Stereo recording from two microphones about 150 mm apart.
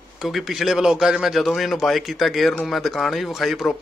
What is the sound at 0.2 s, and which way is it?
A man's voice, centre (ahead or behind).